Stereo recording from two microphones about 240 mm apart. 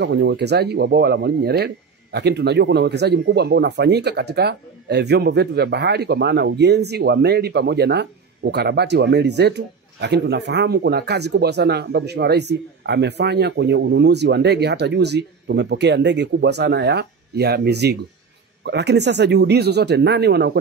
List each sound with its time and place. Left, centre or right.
0.0 s speech: right